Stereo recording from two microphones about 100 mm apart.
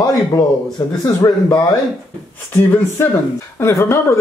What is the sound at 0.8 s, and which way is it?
Speech, 40° left (ahead or behind).